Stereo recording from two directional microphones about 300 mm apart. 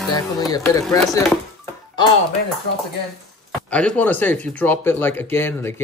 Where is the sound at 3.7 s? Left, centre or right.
Centre.